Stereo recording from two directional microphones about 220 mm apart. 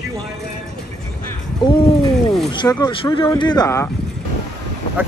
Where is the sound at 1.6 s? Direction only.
20° left (ahead or behind).